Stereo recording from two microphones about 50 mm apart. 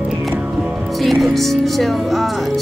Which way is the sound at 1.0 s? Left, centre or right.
Centre.